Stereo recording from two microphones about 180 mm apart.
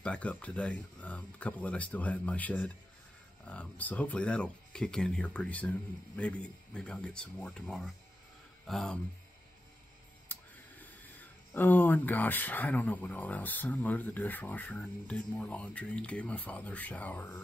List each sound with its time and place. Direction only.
0.0 s speech: 5° left (ahead or behind)
10.2 s speech: 10° left (ahead or behind)